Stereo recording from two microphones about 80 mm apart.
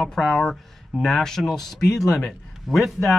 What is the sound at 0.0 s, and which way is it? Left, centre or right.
Speech, centre.